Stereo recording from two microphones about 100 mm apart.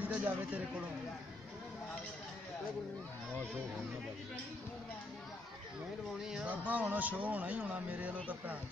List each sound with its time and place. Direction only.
0.0 s a sound: 15° right (ahead or behind)
0.5 s speech: 10° right (ahead or behind)
6.2 s speech: 5° right (ahead or behind)